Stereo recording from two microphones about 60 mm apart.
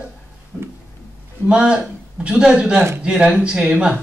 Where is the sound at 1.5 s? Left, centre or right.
Centre.